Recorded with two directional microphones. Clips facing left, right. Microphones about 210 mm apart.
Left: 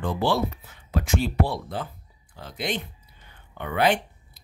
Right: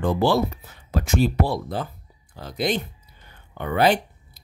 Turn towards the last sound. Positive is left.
turn(degrees=-35)  # may be behind; listen again after turning